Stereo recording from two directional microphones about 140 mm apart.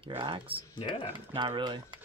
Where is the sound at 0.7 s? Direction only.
35° left (ahead or behind).